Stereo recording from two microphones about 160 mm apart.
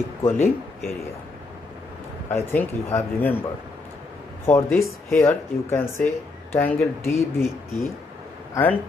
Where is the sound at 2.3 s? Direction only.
15° left (ahead or behind).